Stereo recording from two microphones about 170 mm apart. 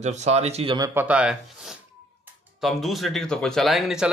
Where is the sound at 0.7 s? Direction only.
20° right (ahead or behind).